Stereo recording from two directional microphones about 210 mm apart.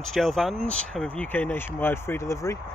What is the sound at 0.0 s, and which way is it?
Speech, centre (ahead or behind).